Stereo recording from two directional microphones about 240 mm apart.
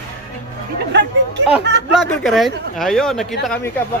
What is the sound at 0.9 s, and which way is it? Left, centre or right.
Speech, right.